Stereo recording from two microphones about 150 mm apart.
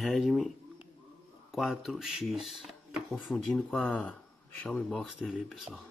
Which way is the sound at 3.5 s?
10° left (ahead or behind).